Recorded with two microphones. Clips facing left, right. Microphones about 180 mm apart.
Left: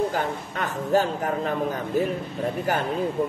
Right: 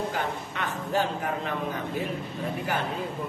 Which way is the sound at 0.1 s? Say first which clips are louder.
Left 4 dB; 40° left (ahead or behind).